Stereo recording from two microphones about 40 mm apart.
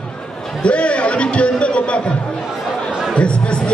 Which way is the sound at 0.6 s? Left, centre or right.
Left.